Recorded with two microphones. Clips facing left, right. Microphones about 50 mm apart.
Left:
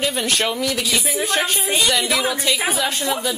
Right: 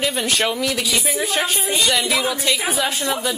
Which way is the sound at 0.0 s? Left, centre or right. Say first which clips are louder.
Even; centre.